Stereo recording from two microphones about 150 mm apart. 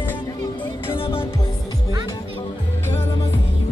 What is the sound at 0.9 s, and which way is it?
Music, 35° left (ahead or behind).